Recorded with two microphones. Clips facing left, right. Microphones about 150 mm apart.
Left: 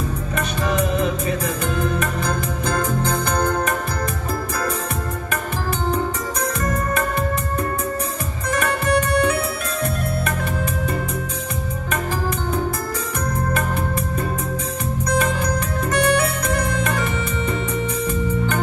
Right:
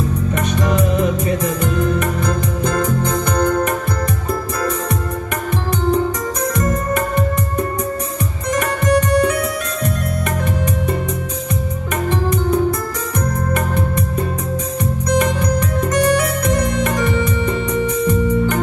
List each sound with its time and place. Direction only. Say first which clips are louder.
8.8 s music: right 5 dB; 35° right (ahead or behind)
15.4 s music: right 4 dB; 35° right (ahead or behind)